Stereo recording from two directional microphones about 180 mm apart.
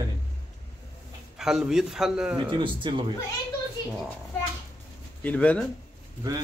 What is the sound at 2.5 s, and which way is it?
Speech, 30° right (ahead or behind).